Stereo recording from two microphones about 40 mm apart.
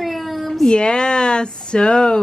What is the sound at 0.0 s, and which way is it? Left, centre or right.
Cat, centre.